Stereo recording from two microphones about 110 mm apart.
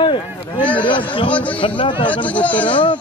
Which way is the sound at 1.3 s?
15° left (ahead or behind).